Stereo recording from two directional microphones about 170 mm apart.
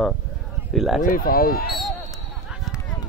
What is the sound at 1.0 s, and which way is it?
Speech, 55° left (ahead or behind).